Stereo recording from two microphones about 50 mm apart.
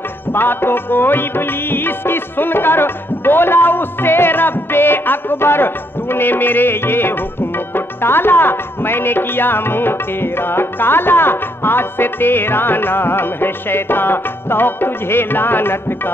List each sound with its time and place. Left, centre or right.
0.3 s music: left